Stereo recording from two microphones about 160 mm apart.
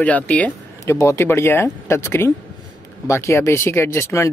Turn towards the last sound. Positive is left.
turn(degrees=15)  # may be behind; listen again after turning